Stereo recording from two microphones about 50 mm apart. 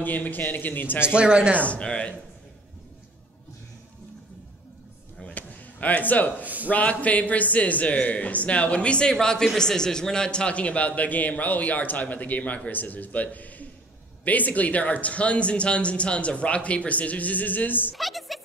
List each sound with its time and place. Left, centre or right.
0.0 s a man's voice: left
1.0 s speech: centre
1.6 s a man's voice: left
5.3 s a sound: left
6.4 s a man's voice: right
6.7 s a man's voice: left
17.9 s a sound: centre